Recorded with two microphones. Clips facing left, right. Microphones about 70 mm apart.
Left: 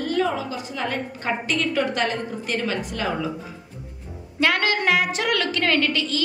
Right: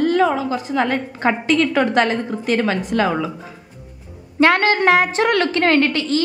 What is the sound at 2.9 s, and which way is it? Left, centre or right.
Speech, right.